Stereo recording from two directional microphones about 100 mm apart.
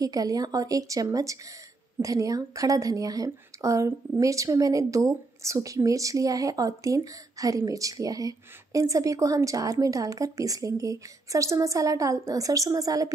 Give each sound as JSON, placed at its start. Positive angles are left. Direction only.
{"t": 0.0, "sound": "speech", "side_deg": -35}